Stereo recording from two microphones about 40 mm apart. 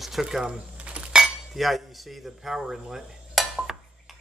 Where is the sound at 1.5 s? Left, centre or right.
Centre.